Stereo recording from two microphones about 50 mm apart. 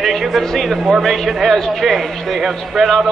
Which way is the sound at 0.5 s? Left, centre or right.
Centre.